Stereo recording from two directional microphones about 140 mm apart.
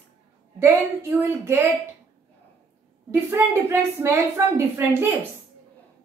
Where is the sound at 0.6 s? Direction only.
15° right (ahead or behind).